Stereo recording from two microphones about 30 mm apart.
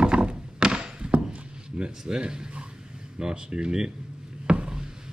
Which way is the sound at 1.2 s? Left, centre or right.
Right.